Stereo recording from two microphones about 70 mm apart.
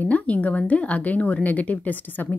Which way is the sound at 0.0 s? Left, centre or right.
Left.